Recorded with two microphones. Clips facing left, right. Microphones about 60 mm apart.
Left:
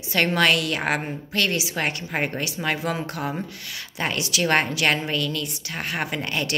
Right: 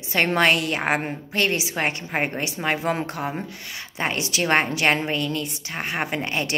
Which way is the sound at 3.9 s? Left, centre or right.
Right.